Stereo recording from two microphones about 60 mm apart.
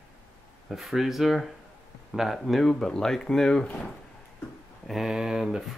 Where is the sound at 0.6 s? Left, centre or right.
Centre.